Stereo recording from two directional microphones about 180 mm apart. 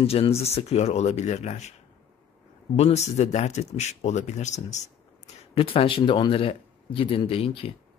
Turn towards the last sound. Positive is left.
turn(degrees=30)  # may be behind; listen again after turning